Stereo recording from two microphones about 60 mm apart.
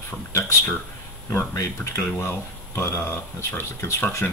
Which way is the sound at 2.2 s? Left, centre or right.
Left.